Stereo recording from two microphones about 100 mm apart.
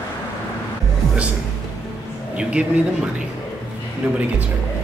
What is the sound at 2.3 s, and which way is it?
Speech, 10° right (ahead or behind).